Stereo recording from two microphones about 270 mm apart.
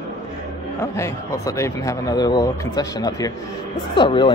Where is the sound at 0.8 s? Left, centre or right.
Centre.